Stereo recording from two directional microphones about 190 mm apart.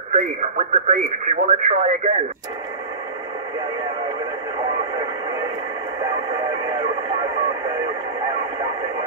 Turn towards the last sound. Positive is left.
turn(degrees=-25)  # may be behind; listen again after turning